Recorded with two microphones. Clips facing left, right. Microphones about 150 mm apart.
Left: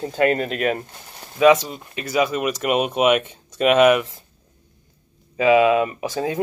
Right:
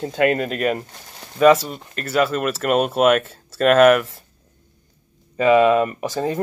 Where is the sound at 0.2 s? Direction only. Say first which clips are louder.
Even; 30° left (ahead or behind).